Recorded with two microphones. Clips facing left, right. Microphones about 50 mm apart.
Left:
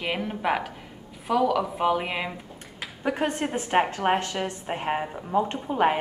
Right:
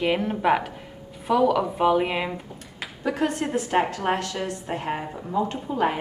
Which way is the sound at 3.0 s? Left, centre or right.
Left.